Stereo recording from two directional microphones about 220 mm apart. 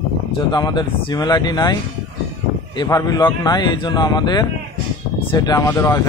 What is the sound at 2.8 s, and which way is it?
Speech, 15° left (ahead or behind).